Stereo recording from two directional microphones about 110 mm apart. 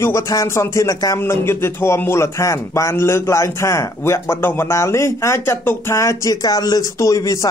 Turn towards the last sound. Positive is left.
turn(degrees=30)  # may be behind; listen again after turning